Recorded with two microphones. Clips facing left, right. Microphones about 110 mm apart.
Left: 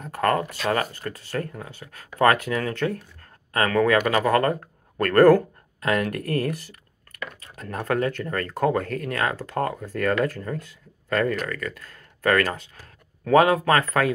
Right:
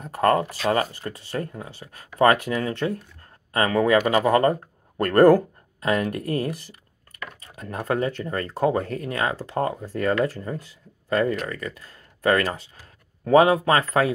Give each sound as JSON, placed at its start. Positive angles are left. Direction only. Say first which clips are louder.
{"t": 0.1, "sound": "speech", "louder": "right 3 dB", "side_deg": -30}
{"t": 7.6, "sound": "speech", "louder": "even", "side_deg": -10}
{"t": 7.9, "sound": "speech", "louder": "even", "side_deg": -25}